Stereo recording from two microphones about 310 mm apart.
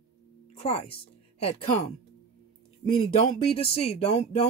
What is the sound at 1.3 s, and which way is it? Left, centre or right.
Speech, centre.